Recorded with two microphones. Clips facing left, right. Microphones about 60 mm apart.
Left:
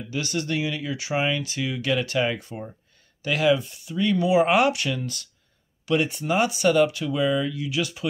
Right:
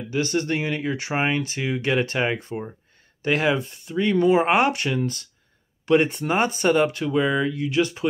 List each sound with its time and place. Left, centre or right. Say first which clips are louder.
0.1 s speech: right 4 dB; right
3.5 s speech: right 2 dB; right
7.2 s speech: right 2 dB; right
7.5 s speech: right 5 dB; right